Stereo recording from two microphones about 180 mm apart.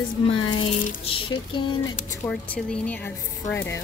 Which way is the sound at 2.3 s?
5° left (ahead or behind).